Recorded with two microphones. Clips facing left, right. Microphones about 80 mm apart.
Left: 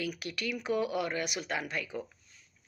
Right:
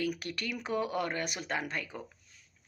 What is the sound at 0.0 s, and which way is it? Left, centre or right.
Speech, right.